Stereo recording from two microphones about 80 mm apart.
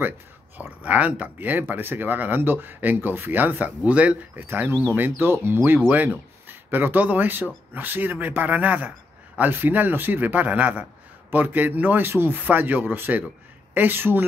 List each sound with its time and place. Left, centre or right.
0.6 s speech: centre
4.5 s speech: right